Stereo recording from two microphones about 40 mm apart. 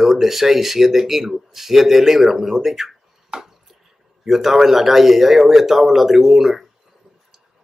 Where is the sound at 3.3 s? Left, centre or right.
Right.